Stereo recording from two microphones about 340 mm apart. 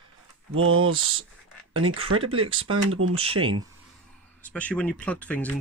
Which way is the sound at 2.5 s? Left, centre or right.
Right.